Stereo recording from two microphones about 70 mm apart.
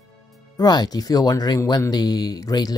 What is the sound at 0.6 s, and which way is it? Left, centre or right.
Speech, left.